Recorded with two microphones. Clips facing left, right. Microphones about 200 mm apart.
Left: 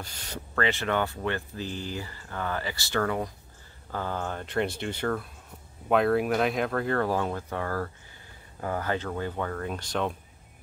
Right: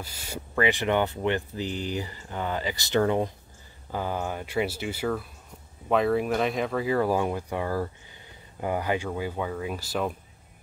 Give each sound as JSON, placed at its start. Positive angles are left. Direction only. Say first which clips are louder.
{"t": 0.0, "sound": "speech", "louder": "right 2 dB", "side_deg": -10}